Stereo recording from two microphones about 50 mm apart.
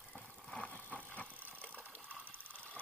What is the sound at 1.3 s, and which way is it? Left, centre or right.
Vehicle, right.